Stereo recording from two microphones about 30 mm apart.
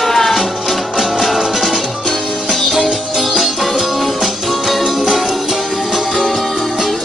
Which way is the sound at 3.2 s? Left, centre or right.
Centre.